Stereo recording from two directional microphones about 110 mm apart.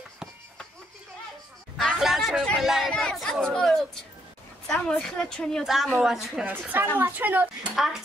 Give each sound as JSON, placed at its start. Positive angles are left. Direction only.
{"t": 1.8, "sound": "a sound", "side_deg": 0}
{"t": 2.9, "sound": "chatter", "side_deg": 5}
{"t": 4.6, "sound": "a woman's voice", "side_deg": 5}
{"t": 5.6, "sound": "a woman's voice", "side_deg": -5}
{"t": 6.6, "sound": "a woman's voice", "side_deg": -15}
{"t": 7.7, "sound": "a woman's voice", "side_deg": -5}